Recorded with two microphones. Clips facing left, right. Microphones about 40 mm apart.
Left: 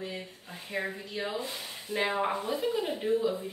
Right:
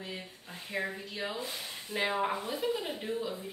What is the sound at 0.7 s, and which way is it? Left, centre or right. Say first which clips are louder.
Speech: left 2 dB; centre.